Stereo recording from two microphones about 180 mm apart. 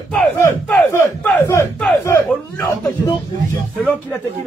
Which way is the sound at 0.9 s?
10° left (ahead or behind).